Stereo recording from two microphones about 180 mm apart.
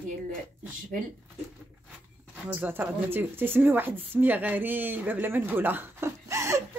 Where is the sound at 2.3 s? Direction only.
10° right (ahead or behind).